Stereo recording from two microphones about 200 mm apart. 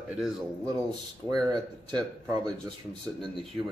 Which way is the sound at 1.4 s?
20° right (ahead or behind).